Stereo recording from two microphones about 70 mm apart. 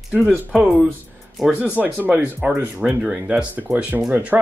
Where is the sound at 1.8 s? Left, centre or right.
Right.